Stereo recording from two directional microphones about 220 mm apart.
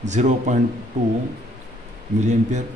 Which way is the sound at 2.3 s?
35° right (ahead or behind).